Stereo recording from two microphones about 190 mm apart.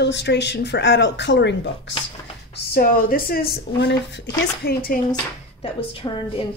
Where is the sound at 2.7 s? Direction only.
50° left (ahead or behind).